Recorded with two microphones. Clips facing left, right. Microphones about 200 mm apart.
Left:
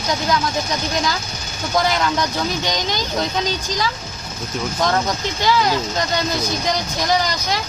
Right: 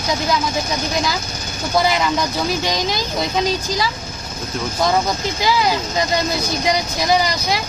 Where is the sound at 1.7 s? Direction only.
5° right (ahead or behind).